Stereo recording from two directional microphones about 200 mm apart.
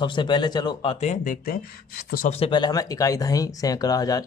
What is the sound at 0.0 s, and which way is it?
Speech, 25° left (ahead or behind).